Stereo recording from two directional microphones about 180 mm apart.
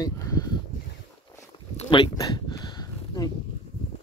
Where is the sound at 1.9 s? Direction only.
20° left (ahead or behind).